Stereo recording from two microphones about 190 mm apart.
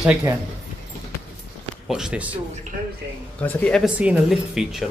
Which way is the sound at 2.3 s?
35° right (ahead or behind).